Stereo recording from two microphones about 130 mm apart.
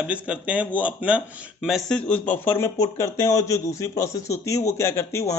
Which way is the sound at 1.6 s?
Centre (ahead or behind).